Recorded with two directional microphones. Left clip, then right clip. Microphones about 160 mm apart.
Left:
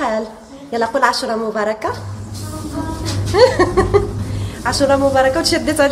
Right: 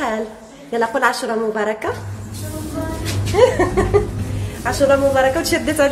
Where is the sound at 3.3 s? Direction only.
10° right (ahead or behind).